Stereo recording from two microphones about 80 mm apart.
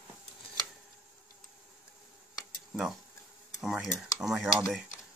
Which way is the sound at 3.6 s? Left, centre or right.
Centre.